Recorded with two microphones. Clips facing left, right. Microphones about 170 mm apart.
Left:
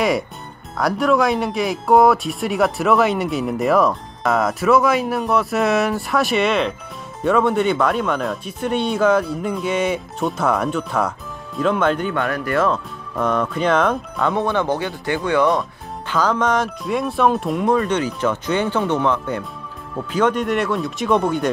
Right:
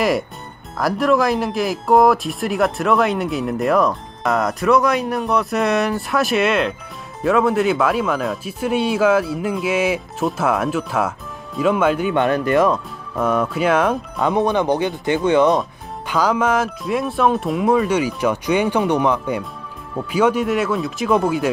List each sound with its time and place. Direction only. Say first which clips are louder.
0.7 s speech: even; centre (ahead or behind)
12.1 s speech: right 5 dB; 20° right (ahead or behind)
16.1 s speech: right 1 dB; 10° right (ahead or behind)